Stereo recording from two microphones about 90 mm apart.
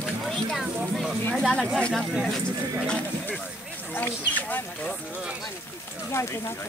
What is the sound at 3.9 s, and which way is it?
Speech, 20° left (ahead or behind).